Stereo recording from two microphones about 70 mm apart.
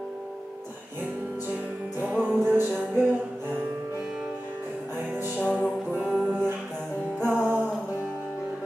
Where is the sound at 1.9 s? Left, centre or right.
Right.